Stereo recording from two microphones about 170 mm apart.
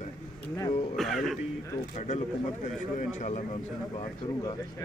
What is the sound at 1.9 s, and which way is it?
Speech, 45° left (ahead or behind).